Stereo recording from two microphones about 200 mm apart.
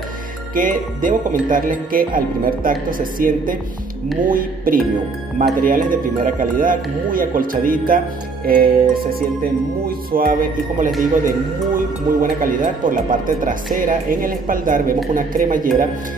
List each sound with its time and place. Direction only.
0.6 s speech: 40° right (ahead or behind)